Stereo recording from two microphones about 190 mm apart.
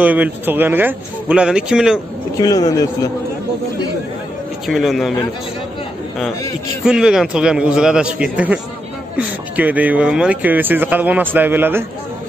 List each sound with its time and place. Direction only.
0.0 s speech: 10° right (ahead or behind)
2.3 s speech: 20° left (ahead or behind)
4.6 s a man's voice: centre (ahead or behind)
6.8 s a man's voice: 5° right (ahead or behind)